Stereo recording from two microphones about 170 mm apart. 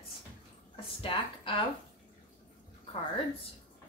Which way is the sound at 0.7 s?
30° left (ahead or behind).